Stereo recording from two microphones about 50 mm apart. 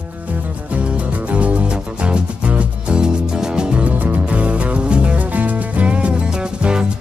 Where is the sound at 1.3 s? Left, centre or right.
Right.